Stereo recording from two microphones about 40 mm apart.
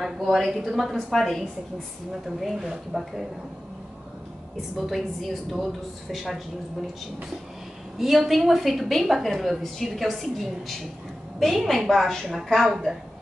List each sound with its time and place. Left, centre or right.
0.0 s a woman's voice: centre
0.5 s a woman's voice: centre
0.7 s a woman's voice: centre
2.2 s a woman's voice: centre
4.6 s a woman's voice: centre
8.0 s a woman's voice: centre